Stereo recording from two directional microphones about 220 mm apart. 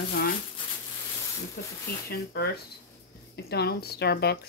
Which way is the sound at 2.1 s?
45° left (ahead or behind).